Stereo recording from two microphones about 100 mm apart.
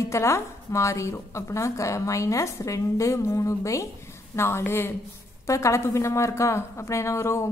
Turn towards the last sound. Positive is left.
turn(degrees=30)  # may be behind; listen again after turning